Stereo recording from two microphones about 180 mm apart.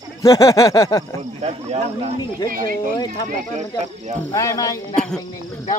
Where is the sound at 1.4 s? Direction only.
35° right (ahead or behind).